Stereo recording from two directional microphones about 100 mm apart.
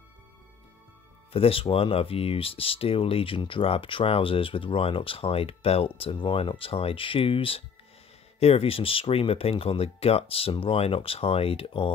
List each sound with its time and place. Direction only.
1.3 s speech: 70° left (ahead or behind)
8.4 s speech: 80° left; by 11.9 s 65° left (ahead or behind)